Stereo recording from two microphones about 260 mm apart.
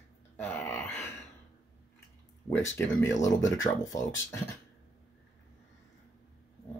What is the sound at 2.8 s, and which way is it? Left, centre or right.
Speech, centre.